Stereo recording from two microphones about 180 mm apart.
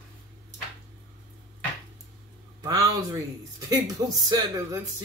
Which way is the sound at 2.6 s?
20° right (ahead or behind).